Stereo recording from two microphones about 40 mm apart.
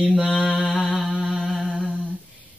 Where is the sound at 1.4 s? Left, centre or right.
Centre.